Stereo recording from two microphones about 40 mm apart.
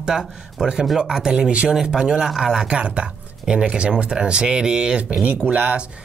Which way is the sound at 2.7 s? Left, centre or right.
Right.